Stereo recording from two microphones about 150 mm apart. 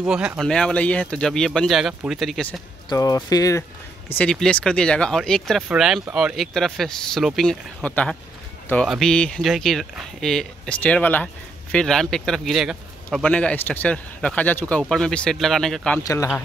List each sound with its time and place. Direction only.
0.0 s speech: 5° right (ahead or behind)
0.5 s a man's voice: 5° left (ahead or behind)
2.9 s speech: 25° left (ahead or behind)
4.2 s a man's voice: 5° left (ahead or behind)
16.0 s speech: 20° left (ahead or behind)